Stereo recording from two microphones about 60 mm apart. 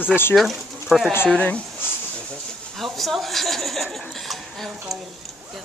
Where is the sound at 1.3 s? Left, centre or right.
Left.